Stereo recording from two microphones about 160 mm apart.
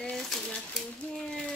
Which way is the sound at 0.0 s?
5° left (ahead or behind).